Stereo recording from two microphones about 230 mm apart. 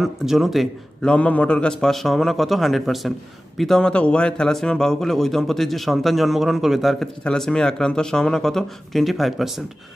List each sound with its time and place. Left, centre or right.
0.0 s speech: centre